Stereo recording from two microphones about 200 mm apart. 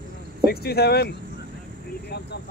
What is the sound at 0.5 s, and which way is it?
Speech, 50° left (ahead or behind).